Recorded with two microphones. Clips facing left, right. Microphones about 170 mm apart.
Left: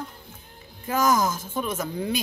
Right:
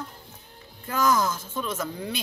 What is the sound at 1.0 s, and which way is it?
Speech, 45° left (ahead or behind).